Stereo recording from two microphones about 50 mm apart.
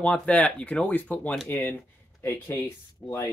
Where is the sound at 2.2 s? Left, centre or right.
Left.